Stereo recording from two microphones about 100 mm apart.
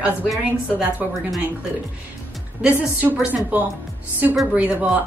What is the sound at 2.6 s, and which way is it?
Speech, 15° right (ahead or behind).